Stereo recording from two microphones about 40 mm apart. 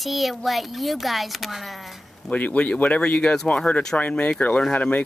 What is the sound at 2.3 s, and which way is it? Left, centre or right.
Speech, left.